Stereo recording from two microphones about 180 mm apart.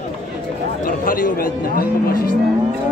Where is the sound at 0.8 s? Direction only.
50° left (ahead or behind).